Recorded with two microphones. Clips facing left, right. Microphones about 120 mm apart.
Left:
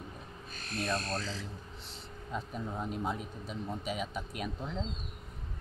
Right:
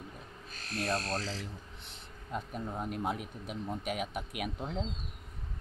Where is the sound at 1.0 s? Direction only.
90° right.